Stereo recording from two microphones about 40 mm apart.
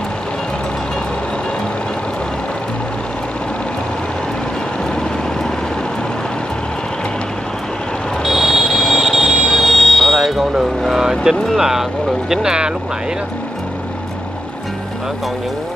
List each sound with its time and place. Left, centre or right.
8.2 s vehicle: centre
11.5 s speech: centre